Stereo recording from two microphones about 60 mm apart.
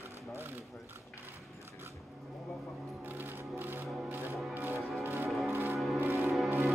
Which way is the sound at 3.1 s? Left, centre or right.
Right.